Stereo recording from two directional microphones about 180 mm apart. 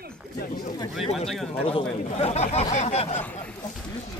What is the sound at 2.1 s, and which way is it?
Speech, 35° left (ahead or behind).